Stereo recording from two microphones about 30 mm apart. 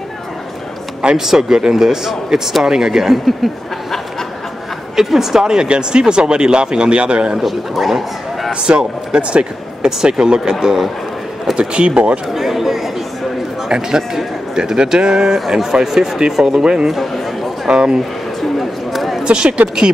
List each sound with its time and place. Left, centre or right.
1.1 s a man's voice: centre
4.9 s a man's voice: centre
5.4 s speech: right
7.4 s speech: centre
8.6 s speech: right
11.5 s speech: right
12.4 s speech: centre
13.7 s speech: right
15.6 s a man's voice: centre
16.4 s speech: right
18.6 s a sound: centre
19.2 s speech: right